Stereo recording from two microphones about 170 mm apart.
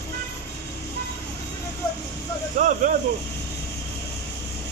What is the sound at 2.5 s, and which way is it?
Speech, 50° right (ahead or behind).